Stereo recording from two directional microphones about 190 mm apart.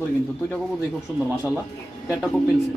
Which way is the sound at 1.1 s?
5° right (ahead or behind).